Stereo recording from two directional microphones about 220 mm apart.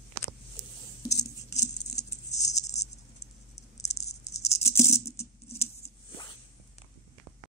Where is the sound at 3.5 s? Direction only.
30° left (ahead or behind).